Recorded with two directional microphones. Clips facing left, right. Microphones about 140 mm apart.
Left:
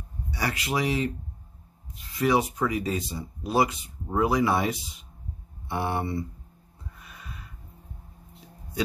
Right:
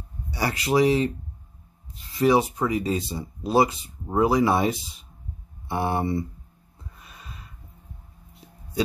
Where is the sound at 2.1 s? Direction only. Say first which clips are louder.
Right 4 dB; 30° right (ahead or behind).